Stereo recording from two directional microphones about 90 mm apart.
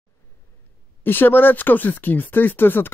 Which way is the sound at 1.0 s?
25° left (ahead or behind).